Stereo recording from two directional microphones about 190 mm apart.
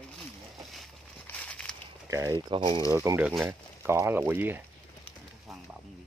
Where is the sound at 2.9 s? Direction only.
15° right (ahead or behind).